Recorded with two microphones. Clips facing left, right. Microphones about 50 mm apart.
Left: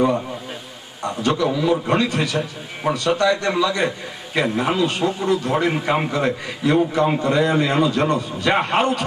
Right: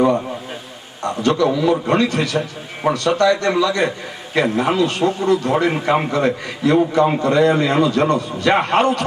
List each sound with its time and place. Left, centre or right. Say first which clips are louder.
1.0 s a man's voice: right 3 dB; centre
2.0 s a man's voice: right 2 dB; centre
2.8 s a man's voice: right 3 dB; centre
3.2 s a man's voice: right 3 dB; centre